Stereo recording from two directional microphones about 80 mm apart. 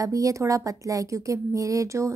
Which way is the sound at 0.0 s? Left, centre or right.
Right.